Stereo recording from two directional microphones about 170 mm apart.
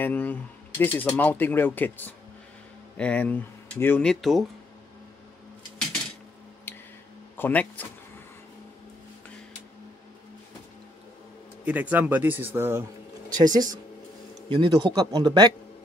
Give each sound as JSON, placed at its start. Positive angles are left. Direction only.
{"t": 0.0, "sound": "speech", "side_deg": 10}
{"t": 7.3, "sound": "speech", "side_deg": 10}
{"t": 11.6, "sound": "a man's voice", "side_deg": -10}